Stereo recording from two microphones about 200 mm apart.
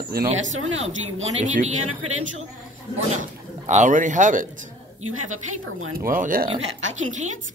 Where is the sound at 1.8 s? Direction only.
90° right.